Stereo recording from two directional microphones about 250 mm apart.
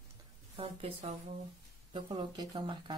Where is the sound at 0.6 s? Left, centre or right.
Right.